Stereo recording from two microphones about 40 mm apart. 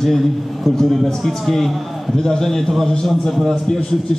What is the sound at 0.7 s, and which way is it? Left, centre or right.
A man's voice, centre.